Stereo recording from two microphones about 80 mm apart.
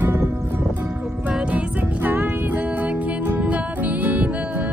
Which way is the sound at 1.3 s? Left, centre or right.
Centre.